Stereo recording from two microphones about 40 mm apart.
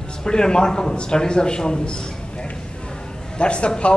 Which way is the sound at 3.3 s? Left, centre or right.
Left.